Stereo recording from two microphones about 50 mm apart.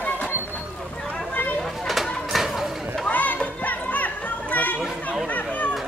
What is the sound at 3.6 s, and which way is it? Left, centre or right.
Children playing, left.